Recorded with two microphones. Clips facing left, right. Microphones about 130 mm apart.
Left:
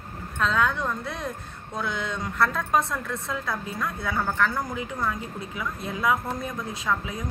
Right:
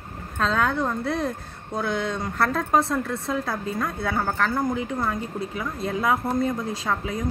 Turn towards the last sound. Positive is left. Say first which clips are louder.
# right 2 dB
turn(degrees=-35)  # may be behind; listen again after turning